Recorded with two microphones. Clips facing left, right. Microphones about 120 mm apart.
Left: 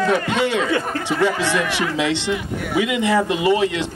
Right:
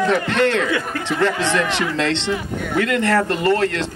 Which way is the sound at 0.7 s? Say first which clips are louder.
Left 1 dB; 30° left (ahead or behind).